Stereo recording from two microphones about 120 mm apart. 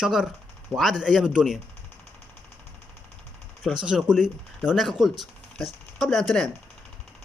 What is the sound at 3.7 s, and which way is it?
Speech, 5° right (ahead or behind).